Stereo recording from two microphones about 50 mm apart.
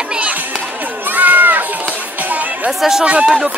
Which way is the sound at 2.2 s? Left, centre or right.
Right.